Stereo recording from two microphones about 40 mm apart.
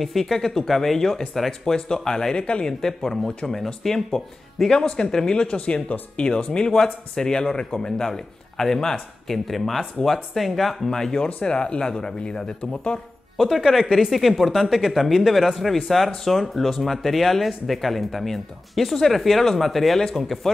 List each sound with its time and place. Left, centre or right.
0.0 s speech: centre
8.1 s a man's voice: centre; by 13.0 s left
13.6 s speech: centre